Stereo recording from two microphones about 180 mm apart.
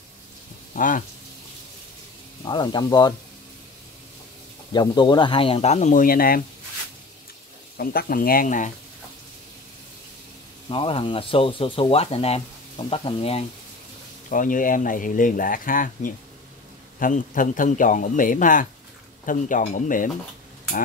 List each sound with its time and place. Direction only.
0.7 s speech: 45° left (ahead or behind)
2.4 s speech: 25° left (ahead or behind)
4.7 s speech: 25° left (ahead or behind); by 6.4 s 55° left (ahead or behind)
7.7 s speech: 55° left (ahead or behind)
10.7 s speech: 30° left (ahead or behind)
14.3 s speech: 45° left (ahead or behind)